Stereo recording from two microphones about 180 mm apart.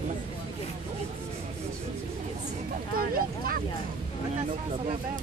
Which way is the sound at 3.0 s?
55° right (ahead or behind).